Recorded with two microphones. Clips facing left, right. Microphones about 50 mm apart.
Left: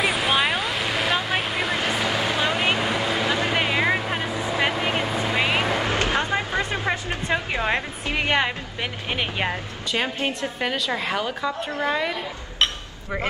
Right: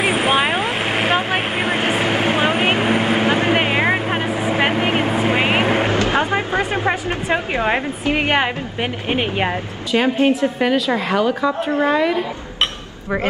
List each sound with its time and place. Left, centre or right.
0.0 s vehicle: right
6.0 s music: right
8.0 s a woman's voice: right
10.4 s a woman's voice: centre